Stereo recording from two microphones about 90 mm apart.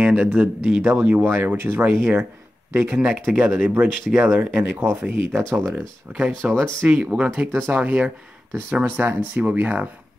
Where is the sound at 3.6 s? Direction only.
15° right (ahead or behind).